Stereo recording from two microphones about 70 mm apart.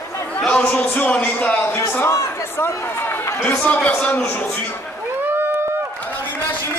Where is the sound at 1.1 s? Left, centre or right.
Left.